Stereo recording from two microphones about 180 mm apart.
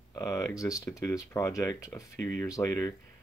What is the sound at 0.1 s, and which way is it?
Speech, 20° left (ahead or behind).